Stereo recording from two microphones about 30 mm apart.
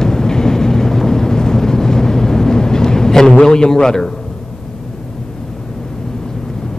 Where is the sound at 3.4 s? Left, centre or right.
Left.